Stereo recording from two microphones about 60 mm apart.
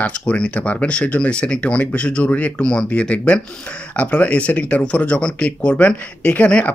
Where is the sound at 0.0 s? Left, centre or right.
Left.